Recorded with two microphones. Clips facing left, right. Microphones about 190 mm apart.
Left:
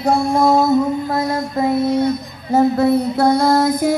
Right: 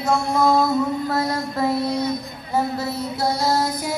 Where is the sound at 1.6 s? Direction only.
15° left (ahead or behind).